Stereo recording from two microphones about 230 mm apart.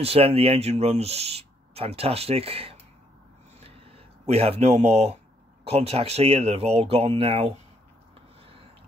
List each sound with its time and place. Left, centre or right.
0.0 s speech: right
3.6 s a sound: right
5.7 s speech: right